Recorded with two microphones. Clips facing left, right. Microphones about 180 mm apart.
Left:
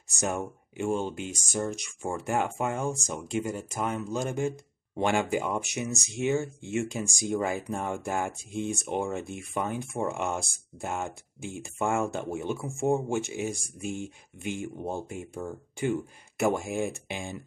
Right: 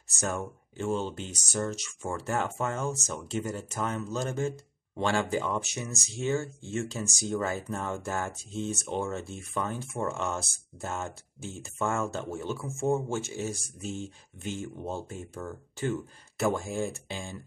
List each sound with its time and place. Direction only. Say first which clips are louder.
0.2 s speech: left 2 dB; 15° left (ahead or behind)